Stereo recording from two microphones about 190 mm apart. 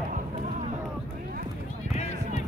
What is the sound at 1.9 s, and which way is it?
Basketball bounce, 35° left (ahead or behind).